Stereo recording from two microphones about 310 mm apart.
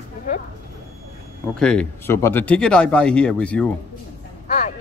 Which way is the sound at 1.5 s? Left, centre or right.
Centre.